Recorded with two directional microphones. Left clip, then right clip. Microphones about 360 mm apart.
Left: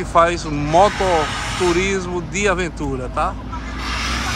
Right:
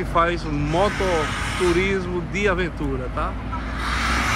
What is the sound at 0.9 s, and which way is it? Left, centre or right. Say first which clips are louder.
Speech: left 4 dB; left.